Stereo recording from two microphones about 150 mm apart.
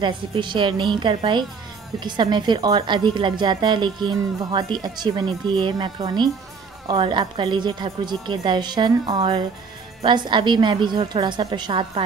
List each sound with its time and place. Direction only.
0.0 s a woman's voice: 35° right (ahead or behind)